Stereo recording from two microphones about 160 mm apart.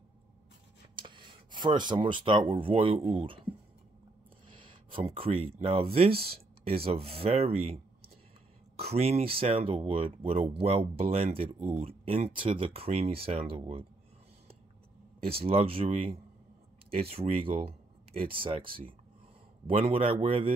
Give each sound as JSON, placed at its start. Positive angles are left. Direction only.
{"t": 0.9, "sound": "speech", "side_deg": -30}
{"t": 4.5, "sound": "speech", "side_deg": -35}
{"t": 15.2, "sound": "speech", "side_deg": -35}